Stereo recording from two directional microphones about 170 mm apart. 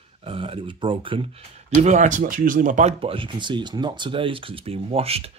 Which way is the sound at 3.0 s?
30° right (ahead or behind).